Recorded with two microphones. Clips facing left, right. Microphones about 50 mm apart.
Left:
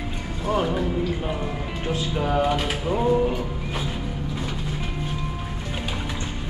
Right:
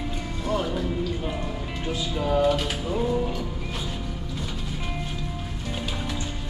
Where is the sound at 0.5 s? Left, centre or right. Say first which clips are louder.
Left 4 dB; centre.